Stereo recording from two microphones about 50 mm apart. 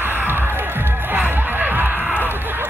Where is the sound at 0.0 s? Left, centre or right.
Right.